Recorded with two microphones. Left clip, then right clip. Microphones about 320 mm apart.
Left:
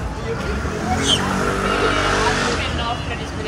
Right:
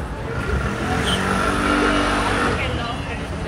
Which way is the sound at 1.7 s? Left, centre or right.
Right.